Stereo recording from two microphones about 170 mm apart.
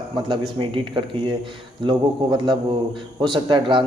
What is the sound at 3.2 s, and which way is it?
Speech, 25° right (ahead or behind).